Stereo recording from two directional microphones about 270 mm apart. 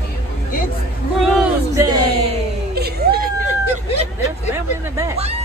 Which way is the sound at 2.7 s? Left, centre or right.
Right.